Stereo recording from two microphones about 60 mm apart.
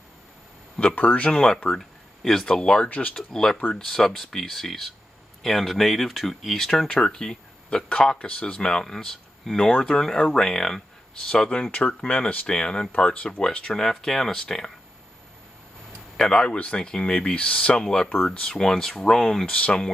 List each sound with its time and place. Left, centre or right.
0.7 s speech: left
1.3 s speech: centre
11.7 s speech: left
16.2 s speech: centre